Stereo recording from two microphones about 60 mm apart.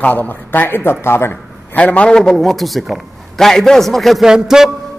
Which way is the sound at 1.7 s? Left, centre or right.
Left.